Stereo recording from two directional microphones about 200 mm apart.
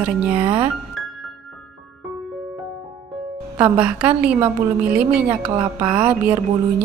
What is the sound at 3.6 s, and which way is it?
Speech, 5° right (ahead or behind).